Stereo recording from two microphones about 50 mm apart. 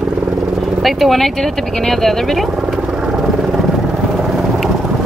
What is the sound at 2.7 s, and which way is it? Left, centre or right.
Vehicle, centre.